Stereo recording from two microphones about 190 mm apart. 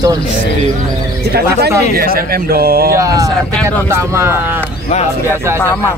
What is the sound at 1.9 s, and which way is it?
Speech, 50° right (ahead or behind).